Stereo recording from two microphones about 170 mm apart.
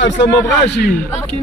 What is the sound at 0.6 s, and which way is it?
Speech, 80° left.